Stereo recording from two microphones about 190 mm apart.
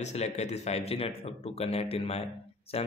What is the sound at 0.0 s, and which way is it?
A man's voice, 35° left (ahead or behind).